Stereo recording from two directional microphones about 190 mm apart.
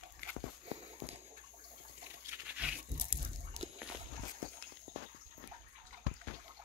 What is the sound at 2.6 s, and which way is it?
Crunch, 5° right (ahead or behind).